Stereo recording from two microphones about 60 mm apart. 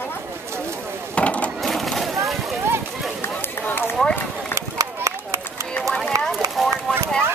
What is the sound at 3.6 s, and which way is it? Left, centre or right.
Run, left.